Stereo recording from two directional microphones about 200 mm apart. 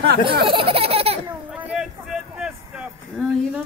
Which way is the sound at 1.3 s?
5° right (ahead or behind).